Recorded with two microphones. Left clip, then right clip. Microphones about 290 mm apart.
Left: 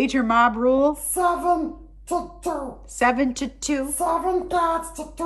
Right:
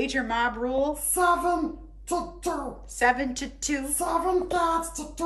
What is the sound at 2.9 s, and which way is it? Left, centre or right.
Speech, centre.